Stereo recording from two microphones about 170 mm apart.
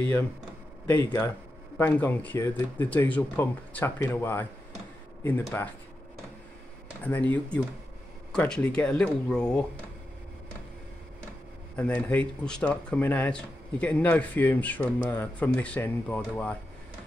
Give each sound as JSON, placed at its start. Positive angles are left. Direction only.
{"t": 0.8, "sound": "speech", "side_deg": 15}
{"t": 5.5, "sound": "speech", "side_deg": 15}
{"t": 7.1, "sound": "speech", "side_deg": 10}
{"t": 11.7, "sound": "speech", "side_deg": 10}